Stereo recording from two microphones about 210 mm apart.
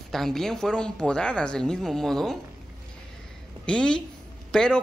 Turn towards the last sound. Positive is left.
turn(degrees=5)  # may be behind; listen again after turning